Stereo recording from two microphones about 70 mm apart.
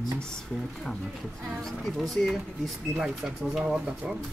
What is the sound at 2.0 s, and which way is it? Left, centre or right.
Speech, centre.